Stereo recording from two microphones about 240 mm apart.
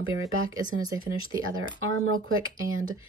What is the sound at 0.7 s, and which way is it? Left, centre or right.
Speech, right.